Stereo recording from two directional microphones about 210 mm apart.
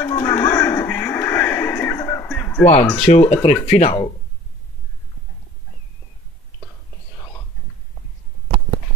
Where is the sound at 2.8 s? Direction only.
5° left (ahead or behind).